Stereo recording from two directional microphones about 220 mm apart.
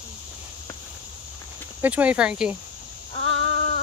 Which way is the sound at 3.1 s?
25° left (ahead or behind).